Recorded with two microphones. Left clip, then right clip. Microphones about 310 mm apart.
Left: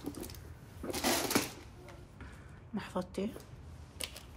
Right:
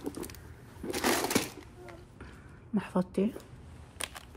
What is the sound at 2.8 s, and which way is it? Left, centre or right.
Speech, right.